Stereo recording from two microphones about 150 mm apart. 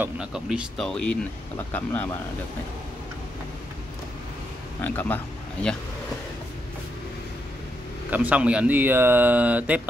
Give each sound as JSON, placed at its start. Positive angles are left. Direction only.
{"t": 0.0, "sound": "speech", "side_deg": -5}
{"t": 4.8, "sound": "speech", "side_deg": 15}
{"t": 8.1, "sound": "speech", "side_deg": -10}